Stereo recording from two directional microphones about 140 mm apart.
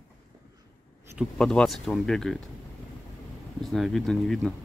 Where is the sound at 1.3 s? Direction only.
5° left (ahead or behind).